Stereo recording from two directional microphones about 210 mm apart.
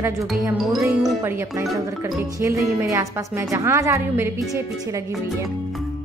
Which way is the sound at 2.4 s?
15° right (ahead or behind).